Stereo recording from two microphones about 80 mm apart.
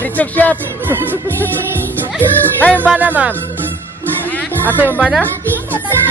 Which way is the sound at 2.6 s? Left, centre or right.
Left.